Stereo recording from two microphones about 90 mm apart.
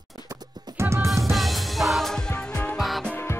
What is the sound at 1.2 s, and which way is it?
Music, centre (ahead or behind).